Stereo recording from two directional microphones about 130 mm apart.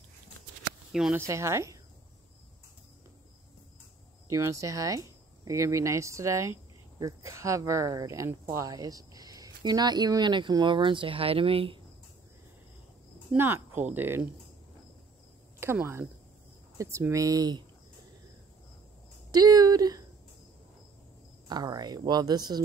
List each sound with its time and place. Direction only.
1.1 s speech: 20° right (ahead or behind)
4.3 s speech: 25° right (ahead or behind); by 11.8 s 45° right (ahead or behind)
13.4 s speech: 15° right (ahead or behind)
15.6 s speech: 20° right (ahead or behind)
19.3 s speech: 30° right (ahead or behind)
21.5 s speech: 30° right (ahead or behind)